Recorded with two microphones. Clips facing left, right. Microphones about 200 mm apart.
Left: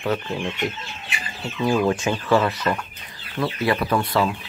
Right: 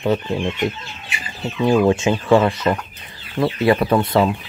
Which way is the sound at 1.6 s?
20° right (ahead or behind).